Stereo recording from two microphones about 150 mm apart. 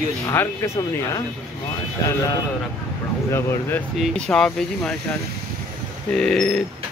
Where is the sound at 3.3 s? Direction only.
15° left (ahead or behind).